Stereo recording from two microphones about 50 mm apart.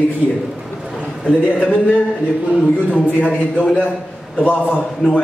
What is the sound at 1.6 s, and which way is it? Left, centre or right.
A man's voice, left.